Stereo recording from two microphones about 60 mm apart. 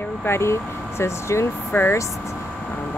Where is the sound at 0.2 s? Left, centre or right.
Left.